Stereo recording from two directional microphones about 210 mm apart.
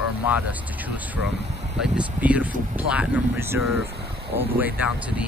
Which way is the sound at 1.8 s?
5° right (ahead or behind).